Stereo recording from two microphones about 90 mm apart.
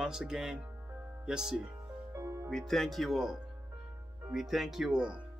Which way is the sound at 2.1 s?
35° right (ahead or behind).